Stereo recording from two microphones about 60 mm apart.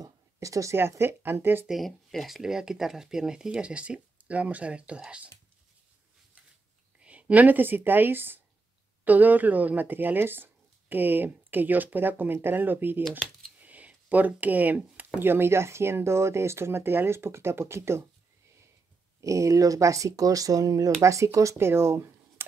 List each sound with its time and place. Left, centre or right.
0.0 s a sound: right
0.7 s speech: right
1.7 s speech: centre
7.0 s a woman's voice: right
13.6 s a sound: right
15.1 s speech: right
19.2 s speech: right
21.0 s speech: right